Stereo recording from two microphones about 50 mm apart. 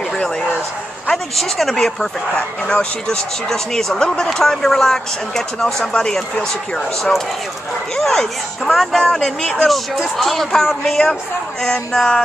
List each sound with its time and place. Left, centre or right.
1.1 s speech: centre
2.3 s speech: left
3.4 s speech: centre
7.9 s speech: centre
9.5 s speech: centre